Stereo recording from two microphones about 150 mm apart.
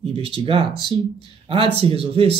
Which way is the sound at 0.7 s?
30° left (ahead or behind).